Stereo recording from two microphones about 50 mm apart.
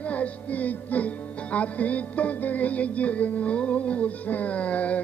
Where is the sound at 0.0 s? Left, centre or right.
Left.